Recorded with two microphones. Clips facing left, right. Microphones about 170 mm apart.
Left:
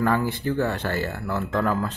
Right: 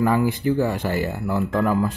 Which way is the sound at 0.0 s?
15° right (ahead or behind).